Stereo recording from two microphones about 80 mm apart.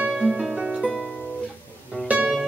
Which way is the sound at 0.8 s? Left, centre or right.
Centre.